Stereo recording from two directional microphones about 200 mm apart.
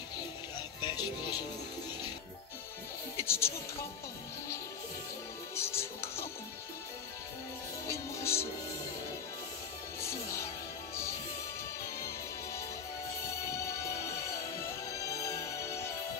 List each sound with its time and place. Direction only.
0.7 s music: 20° left (ahead or behind)
3.2 s music: 10° left (ahead or behind)
5.6 s music: 10° left (ahead or behind)
7.9 s music: 15° left (ahead or behind)
9.9 s music: 15° left (ahead or behind)
13.5 s music: 15° left (ahead or behind)
14.9 s music: 15° left (ahead or behind)